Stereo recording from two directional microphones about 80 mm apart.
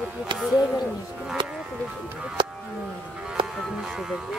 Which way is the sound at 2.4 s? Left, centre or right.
Right.